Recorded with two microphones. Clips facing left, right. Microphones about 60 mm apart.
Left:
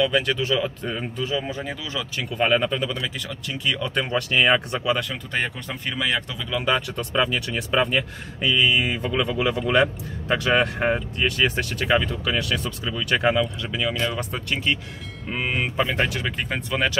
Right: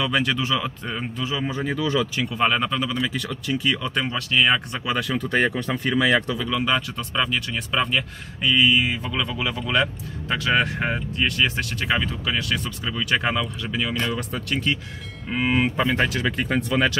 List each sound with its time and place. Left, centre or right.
0.0 s speech: centre
1.5 s speech: centre
5.7 s speech: right
6.5 s speech: centre
9.1 s speech: centre
9.8 s speech: centre